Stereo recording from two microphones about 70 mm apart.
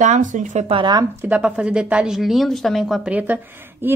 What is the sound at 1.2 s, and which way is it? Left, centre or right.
Speech, centre.